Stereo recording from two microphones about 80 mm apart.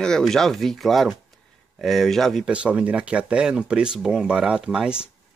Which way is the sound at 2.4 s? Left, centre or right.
Centre.